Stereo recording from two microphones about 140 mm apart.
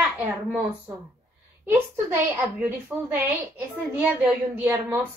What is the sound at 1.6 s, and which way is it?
A woman's voice, 15° right (ahead or behind).